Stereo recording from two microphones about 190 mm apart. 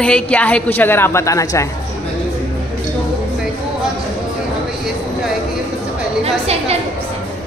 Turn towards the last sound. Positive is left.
turn(degrees=-30)  # may be behind; listen again after turning